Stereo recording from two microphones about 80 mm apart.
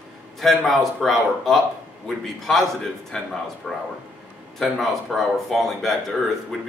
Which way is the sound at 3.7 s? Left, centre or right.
Centre.